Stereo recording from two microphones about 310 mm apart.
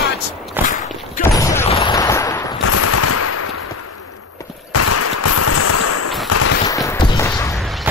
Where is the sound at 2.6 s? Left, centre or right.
Left.